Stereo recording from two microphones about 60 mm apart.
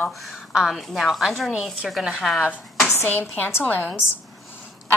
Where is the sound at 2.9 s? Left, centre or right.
Left.